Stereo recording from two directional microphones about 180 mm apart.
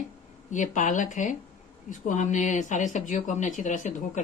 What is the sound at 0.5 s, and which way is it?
Speech, 45° left (ahead or behind).